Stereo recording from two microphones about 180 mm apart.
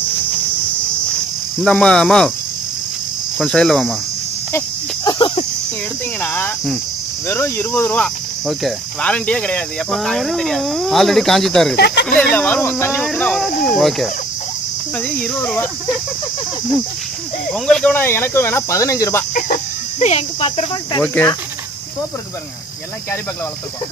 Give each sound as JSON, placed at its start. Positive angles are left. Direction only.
{"t": 1.6, "sound": "cricket", "side_deg": 5}
{"t": 3.3, "sound": "cricket", "side_deg": 5}
{"t": 4.5, "sound": "cricket", "side_deg": 15}
{"t": 6.2, "sound": "speech", "side_deg": 10}
{"t": 7.2, "sound": "cricket", "side_deg": 10}
{"t": 11.7, "sound": "speech", "side_deg": 65}
{"t": 12.2, "sound": "speech", "side_deg": 10}
{"t": 13.0, "sound": "cricket", "side_deg": 0}
{"t": 15.0, "sound": "speech", "side_deg": 5}
{"t": 17.5, "sound": "speech", "side_deg": 5}
{"t": 19.3, "sound": "speech", "side_deg": 45}
{"t": 21.0, "sound": "speech", "side_deg": 10}